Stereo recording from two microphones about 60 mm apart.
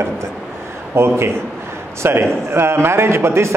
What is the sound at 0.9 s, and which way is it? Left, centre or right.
A man's voice, right.